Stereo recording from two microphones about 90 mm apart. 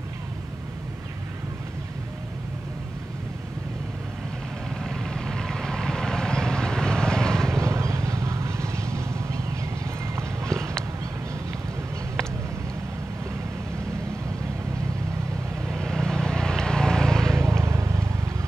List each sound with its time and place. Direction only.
4.8 s vehicle: 5° left (ahead or behind)
7.5 s vehicle: 35° right (ahead or behind)
10.1 s clip-clop: 35° right (ahead or behind)
15.7 s vehicle: 5° left (ahead or behind)
17.4 s vehicle: 35° right (ahead or behind)